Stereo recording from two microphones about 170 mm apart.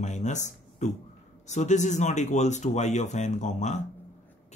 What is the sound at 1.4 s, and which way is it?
Speech, 45° left (ahead or behind).